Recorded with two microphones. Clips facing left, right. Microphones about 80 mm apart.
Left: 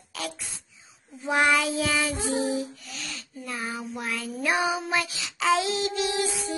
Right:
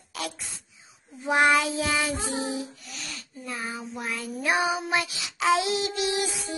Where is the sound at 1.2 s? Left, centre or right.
Right.